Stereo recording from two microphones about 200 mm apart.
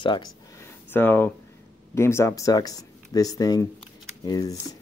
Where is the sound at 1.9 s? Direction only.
15° left (ahead or behind).